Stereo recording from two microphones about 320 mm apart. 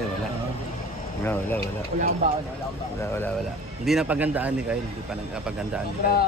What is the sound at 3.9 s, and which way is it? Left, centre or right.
Speech, centre.